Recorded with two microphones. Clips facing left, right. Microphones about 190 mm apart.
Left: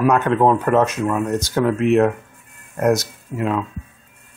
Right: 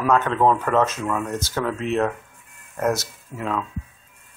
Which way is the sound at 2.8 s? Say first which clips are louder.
Left 5 dB; 15° left (ahead or behind).